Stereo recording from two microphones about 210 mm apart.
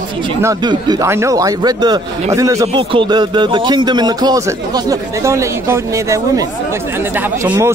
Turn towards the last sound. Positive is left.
turn(degrees=-10)  # may be behind; listen again after turning